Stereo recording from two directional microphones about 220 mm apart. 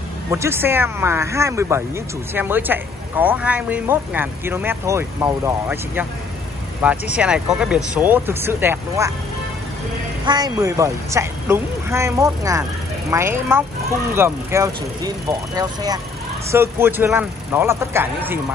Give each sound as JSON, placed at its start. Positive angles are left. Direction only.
{"t": 0.3, "sound": "speech", "side_deg": -10}
{"t": 10.2, "sound": "speech", "side_deg": -20}